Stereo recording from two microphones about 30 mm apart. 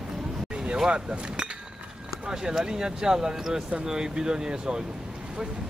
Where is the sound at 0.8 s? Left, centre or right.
Right.